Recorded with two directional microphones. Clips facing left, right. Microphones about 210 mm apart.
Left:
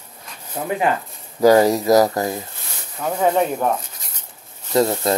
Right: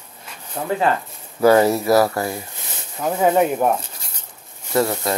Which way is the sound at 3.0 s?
5° right (ahead or behind).